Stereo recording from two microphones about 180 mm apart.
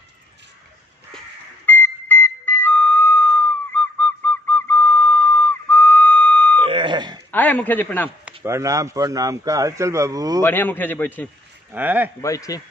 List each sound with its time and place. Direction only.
1.7 s whistle: 10° left (ahead or behind)
6.6 s beep: 30° right (ahead or behind)
7.2 s a man's voice: 10° left (ahead or behind)
8.5 s speech: 15° right (ahead or behind)
10.4 s a man's voice: 10° left (ahead or behind)
11.7 s speech: 10° right (ahead or behind)
12.2 s a man's voice: 20° left (ahead or behind)